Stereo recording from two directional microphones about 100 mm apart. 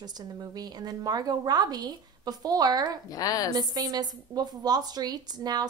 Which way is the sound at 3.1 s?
40° left (ahead or behind).